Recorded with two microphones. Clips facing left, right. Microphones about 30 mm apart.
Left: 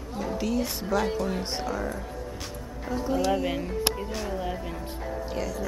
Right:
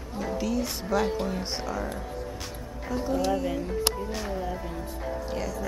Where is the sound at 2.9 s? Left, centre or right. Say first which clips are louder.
Even; centre.